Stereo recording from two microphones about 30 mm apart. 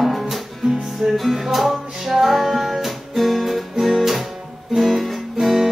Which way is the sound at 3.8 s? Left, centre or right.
Centre.